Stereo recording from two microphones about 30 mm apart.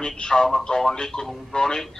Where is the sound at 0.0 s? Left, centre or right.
Left; by 1.3 s centre.